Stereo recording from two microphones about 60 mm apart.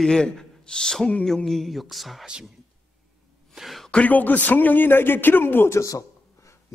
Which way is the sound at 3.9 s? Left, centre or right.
Left.